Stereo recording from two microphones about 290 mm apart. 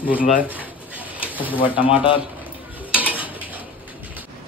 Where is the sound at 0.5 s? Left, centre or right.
Centre.